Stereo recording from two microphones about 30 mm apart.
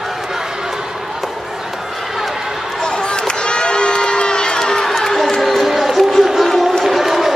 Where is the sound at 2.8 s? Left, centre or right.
Left.